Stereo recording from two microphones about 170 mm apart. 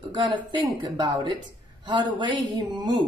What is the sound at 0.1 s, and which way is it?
Speech, 25° right (ahead or behind).